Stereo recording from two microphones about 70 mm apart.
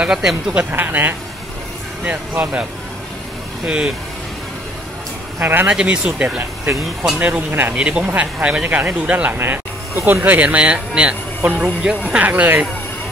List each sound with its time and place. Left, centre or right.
0.0 s speech: centre
0.6 s speech: right
3.6 s speech: centre
5.4 s speech: right
5.7 s speech: centre
7.7 s speech: centre